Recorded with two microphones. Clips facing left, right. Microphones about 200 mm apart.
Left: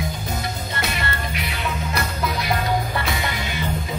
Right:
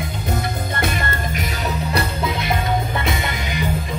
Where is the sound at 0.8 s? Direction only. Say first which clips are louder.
Right 3 dB; 50° right (ahead or behind).